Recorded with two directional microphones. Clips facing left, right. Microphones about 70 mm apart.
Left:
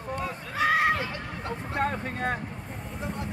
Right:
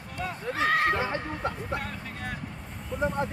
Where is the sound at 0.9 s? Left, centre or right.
Right.